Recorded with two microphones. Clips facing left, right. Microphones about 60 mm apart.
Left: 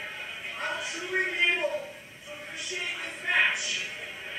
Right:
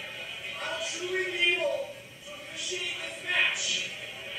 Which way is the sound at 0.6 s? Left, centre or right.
Left.